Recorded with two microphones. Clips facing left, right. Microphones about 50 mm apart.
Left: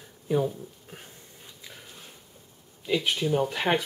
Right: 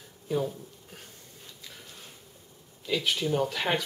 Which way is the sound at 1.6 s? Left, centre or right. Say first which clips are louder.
Left 2 dB; centre.